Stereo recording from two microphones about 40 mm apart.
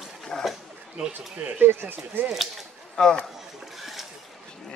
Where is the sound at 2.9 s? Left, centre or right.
Centre.